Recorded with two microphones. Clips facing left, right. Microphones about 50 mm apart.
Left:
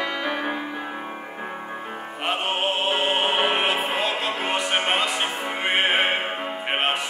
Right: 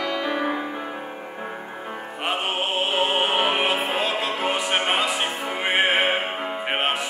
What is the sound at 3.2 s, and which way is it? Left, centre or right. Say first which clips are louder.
Music: even; centre.